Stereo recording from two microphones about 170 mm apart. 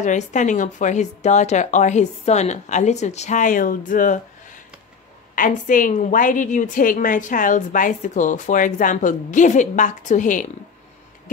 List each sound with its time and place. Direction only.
0.0 s a woman's voice: 45° left (ahead or behind)